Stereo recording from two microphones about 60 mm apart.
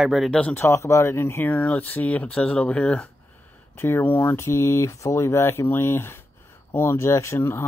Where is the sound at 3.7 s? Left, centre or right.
Left.